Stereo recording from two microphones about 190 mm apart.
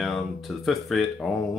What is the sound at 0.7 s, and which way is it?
Speech, centre (ahead or behind).